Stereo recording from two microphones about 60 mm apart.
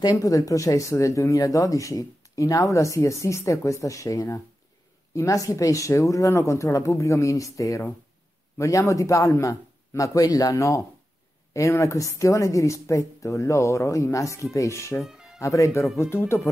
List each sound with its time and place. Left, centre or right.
0.0 s speech: left
15.0 s music: centre
15.4 s speech: left
16.0 s speech: left